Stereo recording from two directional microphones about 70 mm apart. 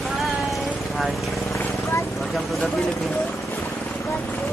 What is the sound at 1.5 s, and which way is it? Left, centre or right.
Vehicle, left.